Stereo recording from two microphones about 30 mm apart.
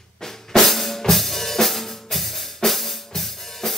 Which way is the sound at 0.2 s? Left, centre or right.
Centre.